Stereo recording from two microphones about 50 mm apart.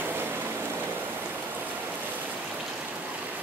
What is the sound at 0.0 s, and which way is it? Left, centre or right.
Vehicle, right.